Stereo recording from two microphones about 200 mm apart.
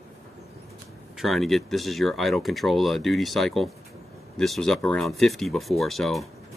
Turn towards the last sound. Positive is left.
turn(degrees=0)  # may be behind; listen again after turning